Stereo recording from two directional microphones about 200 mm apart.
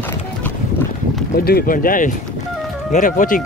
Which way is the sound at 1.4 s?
50° left (ahead or behind).